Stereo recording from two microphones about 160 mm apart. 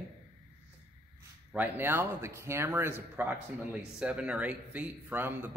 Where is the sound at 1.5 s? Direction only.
10° right (ahead or behind).